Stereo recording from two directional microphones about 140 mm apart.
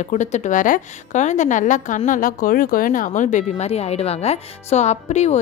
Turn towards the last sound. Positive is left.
turn(degrees=55)  # may be behind; listen again after turning